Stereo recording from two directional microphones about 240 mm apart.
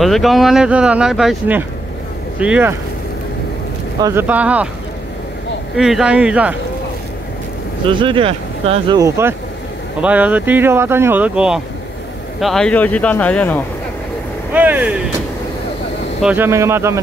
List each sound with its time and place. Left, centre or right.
0.0 s speech: centre
4.0 s speech: centre
5.8 s speech: centre
7.9 s speech: right; by 13.7 s centre
14.5 s artillery fire: centre
16.2 s speech: centre